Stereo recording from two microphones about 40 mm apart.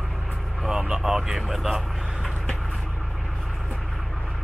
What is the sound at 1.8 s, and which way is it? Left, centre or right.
Vehicle, centre.